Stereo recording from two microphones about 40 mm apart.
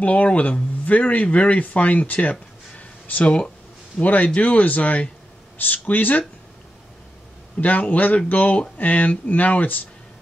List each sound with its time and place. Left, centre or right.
0.0 s speech: left
7.6 s speech: left